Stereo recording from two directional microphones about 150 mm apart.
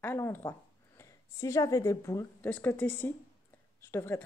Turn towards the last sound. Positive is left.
turn(degrees=15)  # may be behind; listen again after turning